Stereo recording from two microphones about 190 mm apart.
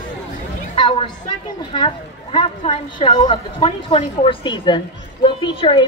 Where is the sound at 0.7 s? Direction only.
25° left (ahead or behind).